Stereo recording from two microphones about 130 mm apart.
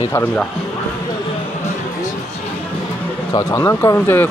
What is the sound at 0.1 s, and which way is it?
Speech, 15° left (ahead or behind).